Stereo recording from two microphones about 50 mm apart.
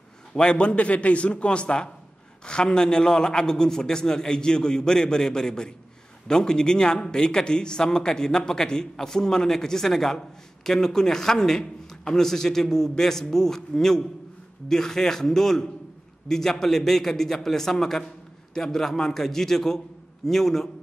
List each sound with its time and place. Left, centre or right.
0.3 s a man's voice: centre